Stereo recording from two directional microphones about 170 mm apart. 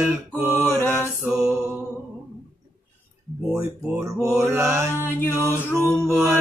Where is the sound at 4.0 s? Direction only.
20° right (ahead or behind).